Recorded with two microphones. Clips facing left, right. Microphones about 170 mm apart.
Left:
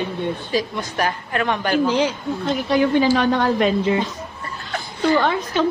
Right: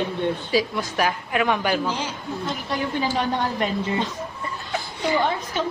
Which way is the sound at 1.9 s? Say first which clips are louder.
Left 9 dB; 80° left.